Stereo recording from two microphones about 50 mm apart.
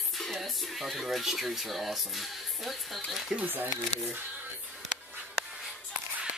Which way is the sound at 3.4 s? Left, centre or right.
Right.